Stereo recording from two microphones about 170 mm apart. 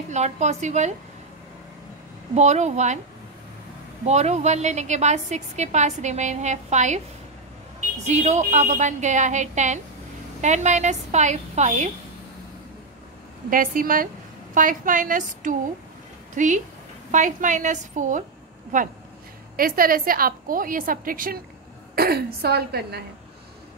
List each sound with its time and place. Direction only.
0.1 s a woman's voice: 40° right (ahead or behind)
2.3 s a woman's voice: 40° right (ahead or behind)
4.0 s a woman's voice: 40° right (ahead or behind)
8.0 s a woman's voice: 40° right (ahead or behind)
13.5 s a woman's voice: 55° right (ahead or behind)